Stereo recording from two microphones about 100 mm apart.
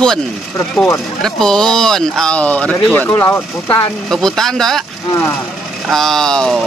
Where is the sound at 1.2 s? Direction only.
5° left (ahead or behind); by 3.8 s 20° left (ahead or behind).